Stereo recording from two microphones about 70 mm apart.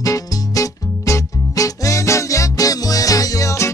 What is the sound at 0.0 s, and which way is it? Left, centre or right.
Music, left.